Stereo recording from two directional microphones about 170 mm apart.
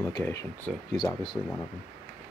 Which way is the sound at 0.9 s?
30° left (ahead or behind).